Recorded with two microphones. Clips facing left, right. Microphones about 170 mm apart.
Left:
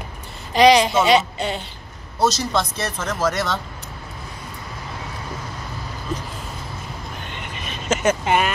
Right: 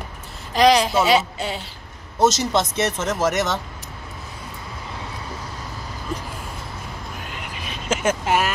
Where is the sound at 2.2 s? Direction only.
20° right (ahead or behind).